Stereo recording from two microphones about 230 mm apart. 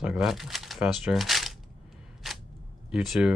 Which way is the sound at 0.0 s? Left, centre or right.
Centre.